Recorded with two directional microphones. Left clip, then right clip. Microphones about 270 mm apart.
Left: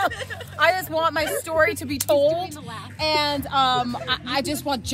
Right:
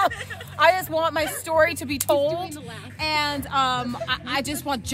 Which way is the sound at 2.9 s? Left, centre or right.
Centre.